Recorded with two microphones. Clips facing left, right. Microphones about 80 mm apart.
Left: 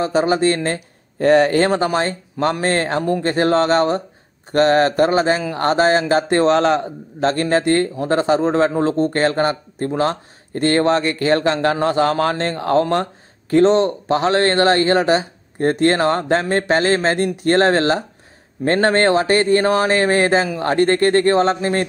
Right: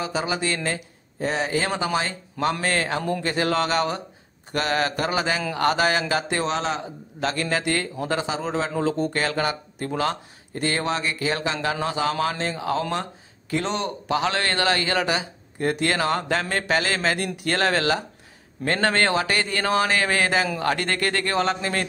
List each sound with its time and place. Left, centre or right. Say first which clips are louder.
0.0 s speech: left 10 dB; left
1.2 s speech: left 11 dB; left
1.7 s a man's voice: left 7 dB; left
7.2 s speech: left 8 dB; left
10.5 s a man's voice: left 9 dB; left